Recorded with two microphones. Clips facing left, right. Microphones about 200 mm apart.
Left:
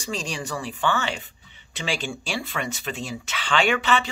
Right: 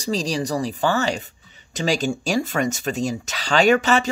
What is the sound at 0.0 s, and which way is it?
Speech, 35° right (ahead or behind).